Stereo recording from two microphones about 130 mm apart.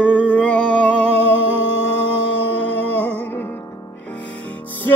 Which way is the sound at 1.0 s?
50° right (ahead or behind).